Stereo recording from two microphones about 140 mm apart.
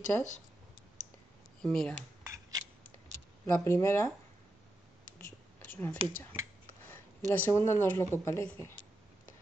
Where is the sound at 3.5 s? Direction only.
15° left (ahead or behind).